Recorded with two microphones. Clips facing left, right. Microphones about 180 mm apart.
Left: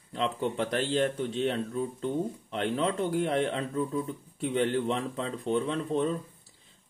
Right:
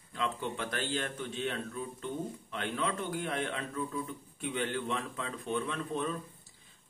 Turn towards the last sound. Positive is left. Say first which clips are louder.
# left 6 dB
turn(degrees=30)  # may be behind; listen again after turning